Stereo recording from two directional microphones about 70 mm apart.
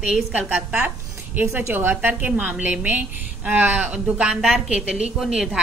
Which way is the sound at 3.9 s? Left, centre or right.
Centre.